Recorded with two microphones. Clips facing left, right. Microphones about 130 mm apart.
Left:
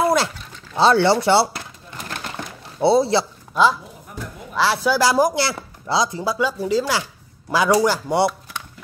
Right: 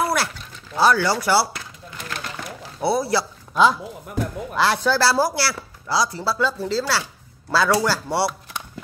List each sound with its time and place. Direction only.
0.0 s a sound: 20° left (ahead or behind)
0.7 s speech: 25° left (ahead or behind)
2.8 s speech: 25° left (ahead or behind)
4.6 s speech: 5° left (ahead or behind)